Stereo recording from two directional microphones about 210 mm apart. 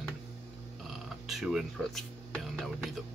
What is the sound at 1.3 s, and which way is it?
Speech, centre (ahead or behind).